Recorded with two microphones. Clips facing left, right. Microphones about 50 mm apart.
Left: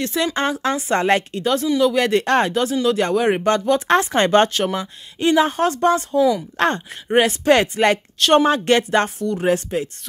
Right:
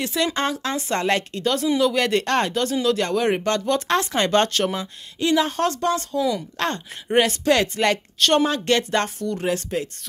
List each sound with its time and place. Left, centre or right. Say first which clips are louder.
0.0 s speech: left 2 dB; centre
3.9 s speech: left 5 dB; left
4.5 s speech: left 1 dB; centre
4.7 s speech: left 3 dB; left
7.1 s speech: left 3 dB; centre
8.2 s speech: left 4 dB; centre
8.5 s speech: left 5 dB; left
9.7 s speech: left 3 dB; centre